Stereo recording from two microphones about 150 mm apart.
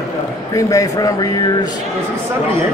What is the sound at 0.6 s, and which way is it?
Speech, 20° left (ahead or behind).